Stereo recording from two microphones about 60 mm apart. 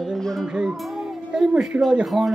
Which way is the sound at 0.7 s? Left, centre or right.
Centre.